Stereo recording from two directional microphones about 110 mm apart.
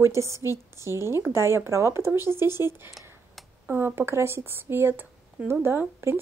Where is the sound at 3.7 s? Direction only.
20° right (ahead or behind).